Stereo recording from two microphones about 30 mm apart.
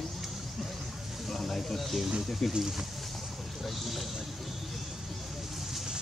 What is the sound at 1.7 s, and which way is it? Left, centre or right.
Speech, centre.